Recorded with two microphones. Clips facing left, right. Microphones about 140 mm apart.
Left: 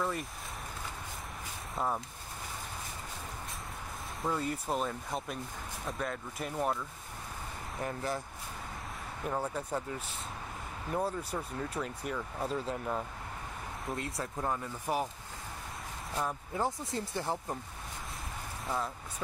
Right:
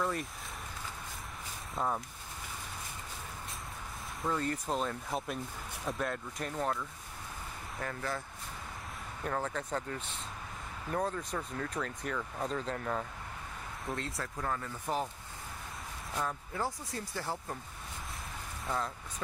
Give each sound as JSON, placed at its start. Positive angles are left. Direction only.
{"t": 0.0, "sound": "speech", "side_deg": 0}
{"t": 4.2, "sound": "speech", "side_deg": 10}
{"t": 7.8, "sound": "speech", "side_deg": 20}
{"t": 9.2, "sound": "speech", "side_deg": 10}
{"t": 14.0, "sound": "speech", "side_deg": 20}
{"t": 16.2, "sound": "speech", "side_deg": 15}
{"t": 18.7, "sound": "speech", "side_deg": 10}